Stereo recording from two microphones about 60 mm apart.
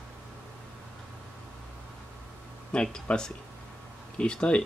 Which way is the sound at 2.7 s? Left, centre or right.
Centre.